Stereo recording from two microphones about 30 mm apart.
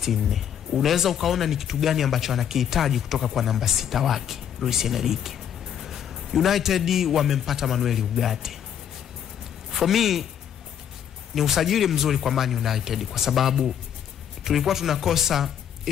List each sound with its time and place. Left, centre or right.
0.0 s speech: centre
9.8 s speech: centre
11.3 s speech: centre